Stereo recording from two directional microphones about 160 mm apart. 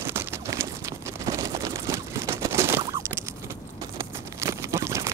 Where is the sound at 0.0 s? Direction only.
15° right (ahead or behind).